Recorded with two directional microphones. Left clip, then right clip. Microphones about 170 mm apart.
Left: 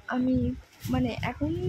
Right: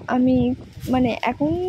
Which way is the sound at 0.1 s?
30° right (ahead or behind).